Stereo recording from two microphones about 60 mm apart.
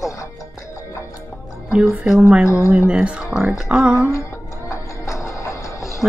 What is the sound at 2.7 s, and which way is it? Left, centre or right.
Speech, centre.